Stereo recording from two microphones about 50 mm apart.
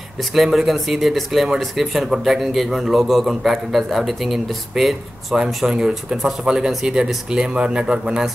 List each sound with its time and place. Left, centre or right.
0.2 s a man's voice: centre